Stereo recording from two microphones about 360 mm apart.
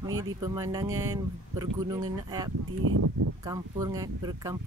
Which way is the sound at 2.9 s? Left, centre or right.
Right.